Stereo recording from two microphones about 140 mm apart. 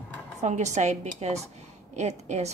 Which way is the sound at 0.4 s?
55° right (ahead or behind).